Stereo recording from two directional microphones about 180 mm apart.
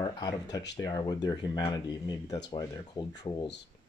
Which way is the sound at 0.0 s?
20° left (ahead or behind).